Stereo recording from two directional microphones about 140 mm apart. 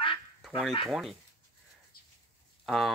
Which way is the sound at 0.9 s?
Centre (ahead or behind).